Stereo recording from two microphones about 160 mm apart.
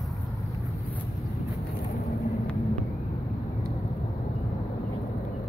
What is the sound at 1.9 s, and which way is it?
Vehicle, 20° left (ahead or behind).